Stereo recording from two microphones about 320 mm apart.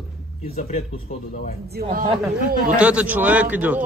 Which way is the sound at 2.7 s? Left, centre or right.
Centre.